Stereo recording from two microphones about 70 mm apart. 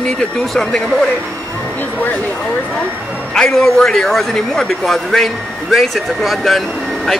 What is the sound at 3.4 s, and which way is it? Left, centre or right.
A man's voice, centre.